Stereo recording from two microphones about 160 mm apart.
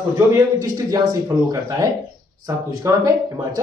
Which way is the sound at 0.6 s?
20° right (ahead or behind).